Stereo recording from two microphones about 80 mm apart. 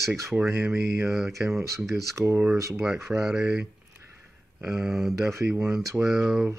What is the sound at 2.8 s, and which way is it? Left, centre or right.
Speech, centre.